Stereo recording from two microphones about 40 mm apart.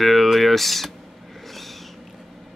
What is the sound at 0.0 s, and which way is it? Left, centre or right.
Speech, centre.